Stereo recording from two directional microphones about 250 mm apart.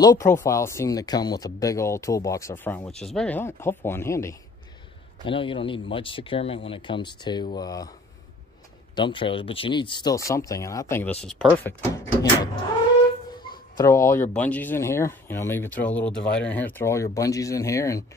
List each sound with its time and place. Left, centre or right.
0.0 s speech: centre
8.9 s speech: centre
13.7 s speech: centre